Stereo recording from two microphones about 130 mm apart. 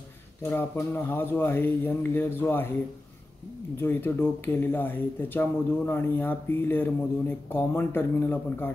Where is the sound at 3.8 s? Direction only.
15° left (ahead or behind).